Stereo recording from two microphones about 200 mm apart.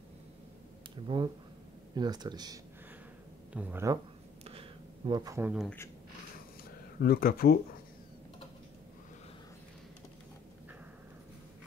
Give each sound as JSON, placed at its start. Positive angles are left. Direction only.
{"t": 1.0, "sound": "speech", "side_deg": -25}
{"t": 3.5, "sound": "speech", "side_deg": -10}
{"t": 4.5, "sound": "a sound", "side_deg": -25}
{"t": 5.5, "sound": "speech", "side_deg": 0}
{"t": 7.0, "sound": "speech", "side_deg": 45}